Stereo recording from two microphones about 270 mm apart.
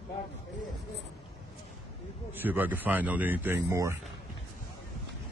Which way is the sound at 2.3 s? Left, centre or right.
Centre.